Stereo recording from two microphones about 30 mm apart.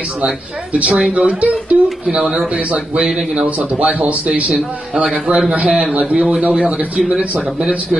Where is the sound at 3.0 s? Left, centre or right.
Right.